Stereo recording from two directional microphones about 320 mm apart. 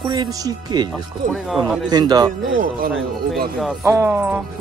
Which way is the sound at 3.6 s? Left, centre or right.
Centre.